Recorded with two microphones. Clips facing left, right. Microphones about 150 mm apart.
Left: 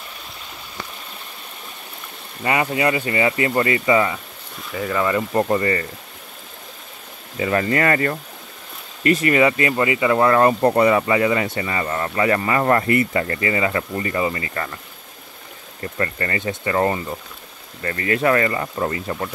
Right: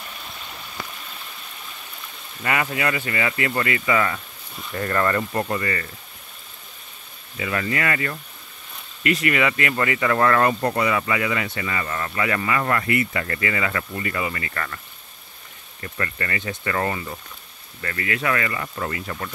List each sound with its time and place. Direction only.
2.4 s speech: 25° left (ahead or behind)
4.7 s speech: 5° left (ahead or behind)
5.3 s speech: 30° left (ahead or behind)
7.3 s speech: 35° left (ahead or behind)
15.8 s speech: 30° left (ahead or behind)